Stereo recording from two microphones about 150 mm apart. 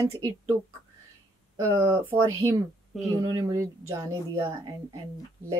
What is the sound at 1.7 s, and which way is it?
Speech, 30° right (ahead or behind).